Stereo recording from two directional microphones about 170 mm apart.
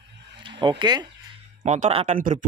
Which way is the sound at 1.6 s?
40° right (ahead or behind).